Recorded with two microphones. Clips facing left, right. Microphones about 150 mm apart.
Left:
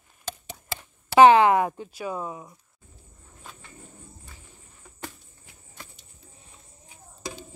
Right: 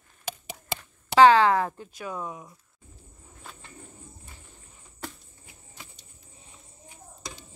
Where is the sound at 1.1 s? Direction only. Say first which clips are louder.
Left 2 dB; 20° left (ahead or behind).